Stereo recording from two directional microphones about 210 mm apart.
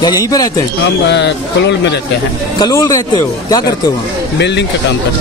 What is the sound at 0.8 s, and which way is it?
Speech, 55° left (ahead or behind).